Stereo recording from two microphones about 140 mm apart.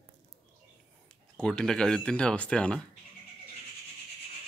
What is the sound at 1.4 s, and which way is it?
Speech, 5° left (ahead or behind).